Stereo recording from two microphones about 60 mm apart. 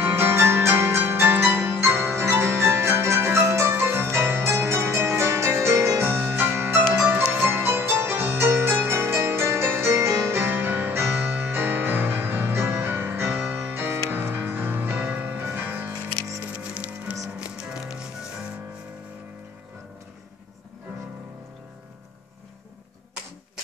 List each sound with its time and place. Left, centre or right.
0.0 s music: right
6.0 s music: right
7.6 s music: right; by 18.5 s centre